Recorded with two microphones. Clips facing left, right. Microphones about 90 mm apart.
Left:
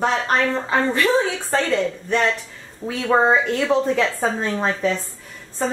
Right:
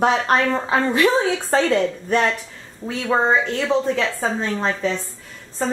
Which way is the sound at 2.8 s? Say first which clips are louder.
Left 2 dB; 5° left (ahead or behind).